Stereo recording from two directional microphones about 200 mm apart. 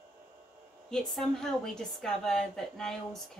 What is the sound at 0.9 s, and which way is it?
A woman's voice, centre (ahead or behind).